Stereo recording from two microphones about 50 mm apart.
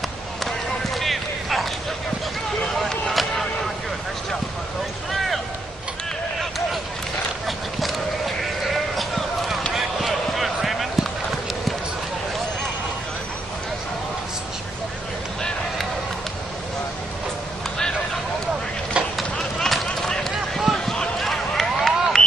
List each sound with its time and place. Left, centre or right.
0.5 s basketball bounce: centre
2.8 s a sound: centre
8.6 s clip-clop: centre
9.8 s basketball bounce: centre
18.9 s a sound: right
19.3 s run: centre
20.1 s basketball bounce: centre
21.2 s run: centre